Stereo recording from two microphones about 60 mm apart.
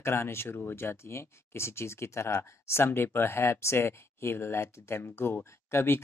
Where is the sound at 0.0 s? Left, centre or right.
Left.